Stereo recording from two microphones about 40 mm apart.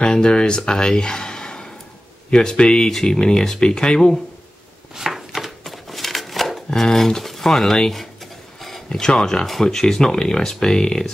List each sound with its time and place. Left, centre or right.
0.0 s speech: left
4.9 s chopping: centre
5.7 s a sound: centre
6.7 s speech: centre
9.0 s speech: centre